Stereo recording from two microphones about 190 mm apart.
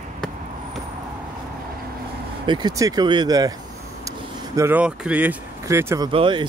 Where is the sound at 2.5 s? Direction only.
20° right (ahead or behind).